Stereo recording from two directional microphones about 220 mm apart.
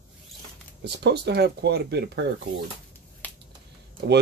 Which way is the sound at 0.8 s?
50° right (ahead or behind).